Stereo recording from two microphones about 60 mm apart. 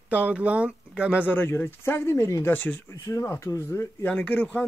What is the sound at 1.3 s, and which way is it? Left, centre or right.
Speech, left.